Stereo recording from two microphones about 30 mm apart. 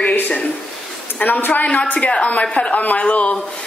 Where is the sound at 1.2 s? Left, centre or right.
Left.